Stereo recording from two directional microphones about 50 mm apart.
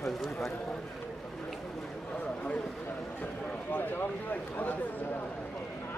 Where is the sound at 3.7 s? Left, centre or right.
Left.